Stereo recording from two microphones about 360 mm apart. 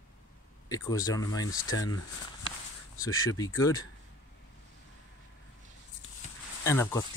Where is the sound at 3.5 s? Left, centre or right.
Centre.